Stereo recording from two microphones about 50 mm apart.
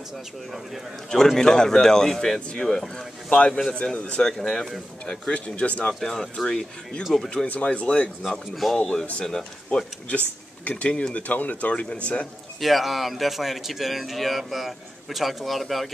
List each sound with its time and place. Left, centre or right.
1.1 s speech: centre
5.9 s speech: centre
7.0 s speech: centre
7.6 s speech: left
8.3 s speech: centre
8.7 s speech: centre
10.6 s speech: left
12.5 s speech: centre